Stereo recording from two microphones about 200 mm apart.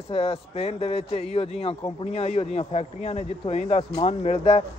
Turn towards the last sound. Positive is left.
turn(degrees=30)  # may be behind; listen again after turning